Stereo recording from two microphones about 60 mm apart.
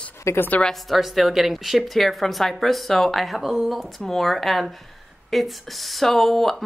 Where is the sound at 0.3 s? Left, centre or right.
Left.